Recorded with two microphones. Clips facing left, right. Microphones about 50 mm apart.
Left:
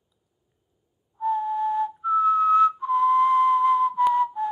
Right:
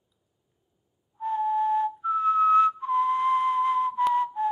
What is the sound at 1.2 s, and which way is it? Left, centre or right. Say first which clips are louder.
Whistling: left 1 dB; centre.